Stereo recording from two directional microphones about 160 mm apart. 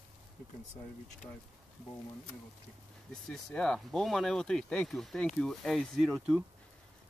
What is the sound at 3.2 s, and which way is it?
Speech, 5° left (ahead or behind).